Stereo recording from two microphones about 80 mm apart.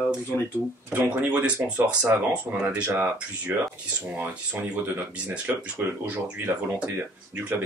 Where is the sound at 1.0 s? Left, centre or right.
Centre.